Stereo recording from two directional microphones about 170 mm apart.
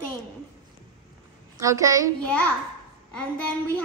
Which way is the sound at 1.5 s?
20° right (ahead or behind).